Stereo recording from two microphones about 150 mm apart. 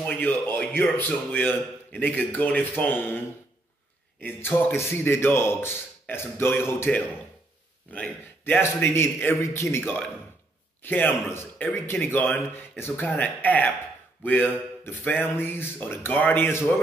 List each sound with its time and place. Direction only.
0.0 s a sound: 10° left (ahead or behind)
0.9 s a man's voice: 10° left (ahead or behind)
4.2 s a man's voice: 10° left (ahead or behind)